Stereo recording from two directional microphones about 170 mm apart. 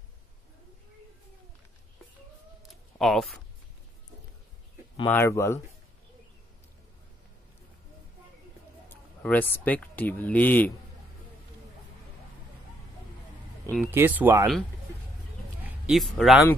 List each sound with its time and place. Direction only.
2.7 s a sound: centre (ahead or behind)
5.0 s speech: 15° left (ahead or behind)
8.8 s speech: 10° left (ahead or behind)
13.8 s speech: 10° right (ahead or behind)
15.6 s speech: centre (ahead or behind)